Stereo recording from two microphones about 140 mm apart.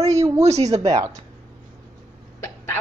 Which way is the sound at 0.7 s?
30° right (ahead or behind).